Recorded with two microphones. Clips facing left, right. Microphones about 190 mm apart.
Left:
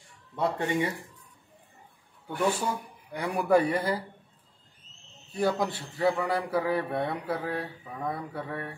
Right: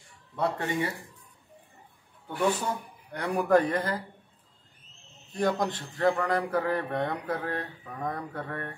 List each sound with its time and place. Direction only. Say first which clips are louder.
0.4 s a man's voice: left 1 dB; 15° left (ahead or behind)
2.2 s a man's voice: even; 10° left (ahead or behind)
5.3 s a man's voice: even; 5° left (ahead or behind)